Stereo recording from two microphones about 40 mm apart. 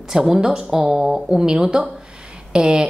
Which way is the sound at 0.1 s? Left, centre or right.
Centre.